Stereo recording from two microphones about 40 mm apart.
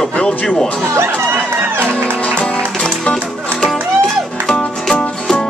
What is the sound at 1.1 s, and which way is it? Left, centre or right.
Music, right.